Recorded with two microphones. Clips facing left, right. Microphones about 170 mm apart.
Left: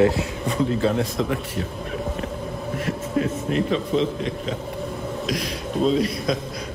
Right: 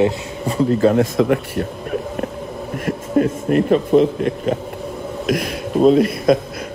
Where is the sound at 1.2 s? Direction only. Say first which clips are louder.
Right 8 dB; 60° right (ahead or behind).